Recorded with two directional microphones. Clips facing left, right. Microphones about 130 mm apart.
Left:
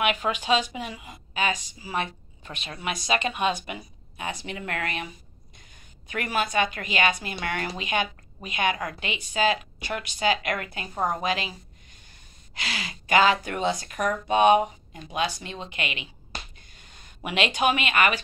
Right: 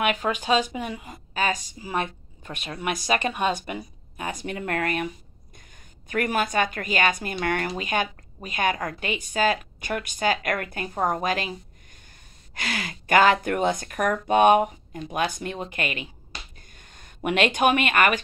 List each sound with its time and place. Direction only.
0.0 s speech: 40° right (ahead or behind)
3.2 s speech: 15° left (ahead or behind)
3.5 s speech: 40° right (ahead or behind)
12.5 s speech: 50° right (ahead or behind)